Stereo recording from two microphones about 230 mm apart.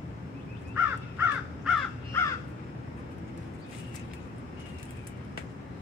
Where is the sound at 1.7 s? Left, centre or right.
Centre.